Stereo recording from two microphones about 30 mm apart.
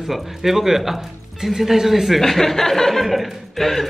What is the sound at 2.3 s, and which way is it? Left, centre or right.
Speech, centre.